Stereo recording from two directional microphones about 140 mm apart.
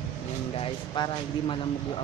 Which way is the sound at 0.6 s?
35° left (ahead or behind).